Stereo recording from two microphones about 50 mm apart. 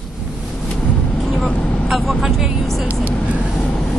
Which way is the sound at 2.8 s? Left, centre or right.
Right.